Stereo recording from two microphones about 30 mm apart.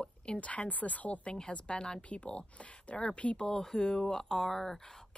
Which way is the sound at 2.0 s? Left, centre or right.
Left.